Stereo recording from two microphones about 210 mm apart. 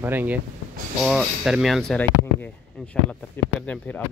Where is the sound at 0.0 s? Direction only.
10° right (ahead or behind).